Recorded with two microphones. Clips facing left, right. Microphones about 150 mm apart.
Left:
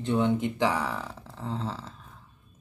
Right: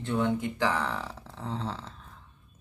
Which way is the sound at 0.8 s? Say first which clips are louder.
Even; centre (ahead or behind).